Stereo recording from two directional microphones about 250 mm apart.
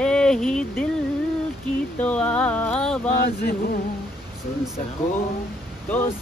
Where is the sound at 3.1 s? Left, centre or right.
Left.